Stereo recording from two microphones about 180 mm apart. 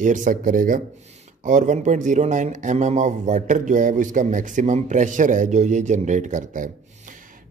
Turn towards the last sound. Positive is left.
turn(degrees=-45)  # may be behind; listen again after turning